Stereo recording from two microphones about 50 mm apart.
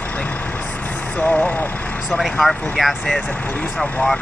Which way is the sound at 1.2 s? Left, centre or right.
Left.